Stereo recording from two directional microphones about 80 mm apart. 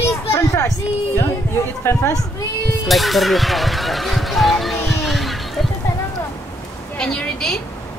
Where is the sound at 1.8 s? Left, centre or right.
Left.